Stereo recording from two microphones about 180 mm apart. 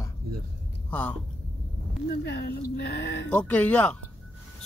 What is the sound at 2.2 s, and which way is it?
Speech, 65° left (ahead or behind).